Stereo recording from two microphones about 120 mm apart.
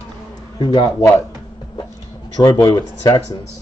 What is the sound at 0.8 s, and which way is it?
Speech, 20° left (ahead or behind).